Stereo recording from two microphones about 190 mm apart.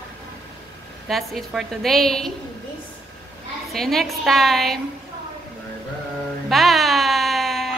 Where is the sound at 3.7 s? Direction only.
Centre (ahead or behind).